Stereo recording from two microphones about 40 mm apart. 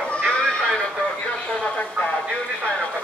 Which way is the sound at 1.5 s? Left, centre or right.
Left.